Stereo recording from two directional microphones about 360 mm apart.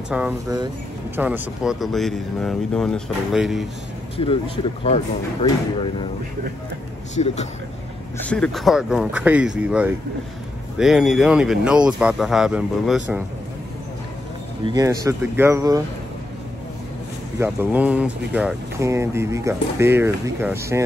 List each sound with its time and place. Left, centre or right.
0.1 s speech: centre
4.8 s speech: centre
7.2 s speech: centre
8.2 s speech: centre
14.6 s speech: centre
17.4 s speech: centre